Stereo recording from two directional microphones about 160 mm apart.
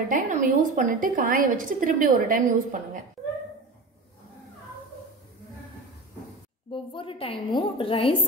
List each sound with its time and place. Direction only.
0.1 s a woman's voice: 55° right (ahead or behind)
6.7 s a woman's voice: 35° left (ahead or behind)